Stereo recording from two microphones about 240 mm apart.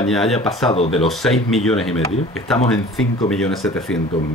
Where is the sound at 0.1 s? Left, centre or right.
Centre.